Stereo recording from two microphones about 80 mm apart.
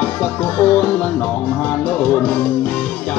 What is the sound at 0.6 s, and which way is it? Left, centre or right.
Music, centre.